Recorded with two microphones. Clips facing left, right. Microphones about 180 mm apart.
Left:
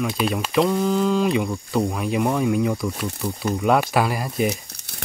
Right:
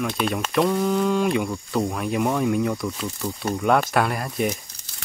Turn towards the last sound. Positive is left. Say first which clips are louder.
# left 2 dB
turn(degrees=0)  # may be behind; listen again after turning